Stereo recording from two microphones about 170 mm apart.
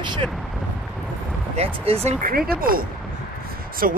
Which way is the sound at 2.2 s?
60° right (ahead or behind).